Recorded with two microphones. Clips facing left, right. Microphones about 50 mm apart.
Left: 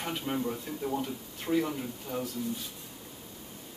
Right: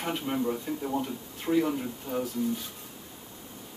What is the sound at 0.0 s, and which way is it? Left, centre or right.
A man's voice, centre.